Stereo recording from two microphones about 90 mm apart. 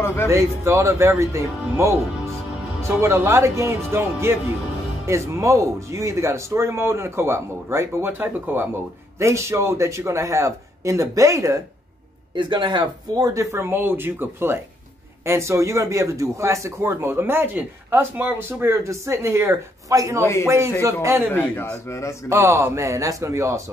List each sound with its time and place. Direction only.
0.0 s a man's voice: 25° left (ahead or behind)
0.3 s speech: 35° right (ahead or behind)
12.4 s speech: 60° right (ahead or behind)
13.3 s speech: 35° right (ahead or behind)
21.3 s a man's voice: 25° left (ahead or behind)
21.6 s speech: 35° left (ahead or behind)
22.3 s speech: 30° right (ahead or behind)